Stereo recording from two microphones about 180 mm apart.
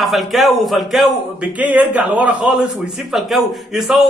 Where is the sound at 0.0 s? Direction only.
Centre (ahead or behind).